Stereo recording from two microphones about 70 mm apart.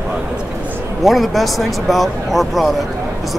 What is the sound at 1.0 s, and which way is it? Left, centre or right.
Speech, centre.